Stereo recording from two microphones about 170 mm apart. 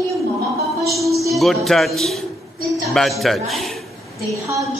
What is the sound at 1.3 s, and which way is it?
A man's voice, centre (ahead or behind).